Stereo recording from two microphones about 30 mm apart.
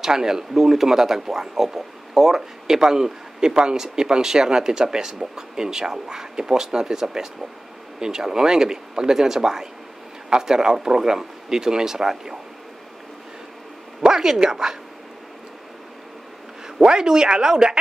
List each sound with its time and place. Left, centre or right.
0.0 s speech: centre
2.6 s speech: centre
14.0 s speech: centre
16.6 s speech: right